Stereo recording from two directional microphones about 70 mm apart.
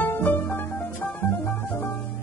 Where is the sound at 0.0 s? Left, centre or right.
Left.